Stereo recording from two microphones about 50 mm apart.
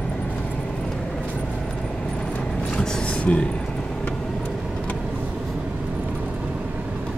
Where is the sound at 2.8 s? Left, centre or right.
Left.